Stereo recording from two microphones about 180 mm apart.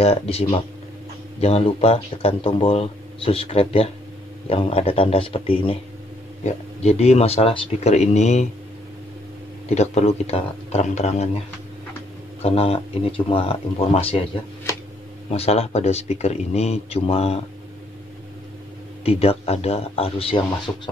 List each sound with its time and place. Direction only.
0.0 s speech: 35° left (ahead or behind)
9.8 s speech: 35° left (ahead or behind)
12.4 s speech: 35° left (ahead or behind)
15.2 s speech: 35° left (ahead or behind)
19.0 s speech: 35° left (ahead or behind)